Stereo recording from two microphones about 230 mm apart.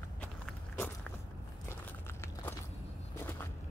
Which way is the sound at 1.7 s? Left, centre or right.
Centre.